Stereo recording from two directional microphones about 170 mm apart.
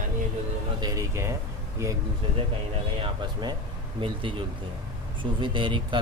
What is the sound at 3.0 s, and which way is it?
Speech, 25° right (ahead or behind).